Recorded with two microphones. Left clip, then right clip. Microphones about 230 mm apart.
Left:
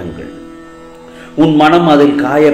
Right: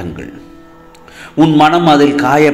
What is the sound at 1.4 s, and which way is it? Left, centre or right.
Speech, right.